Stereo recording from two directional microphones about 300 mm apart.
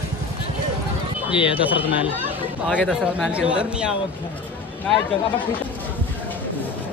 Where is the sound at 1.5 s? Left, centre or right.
Centre.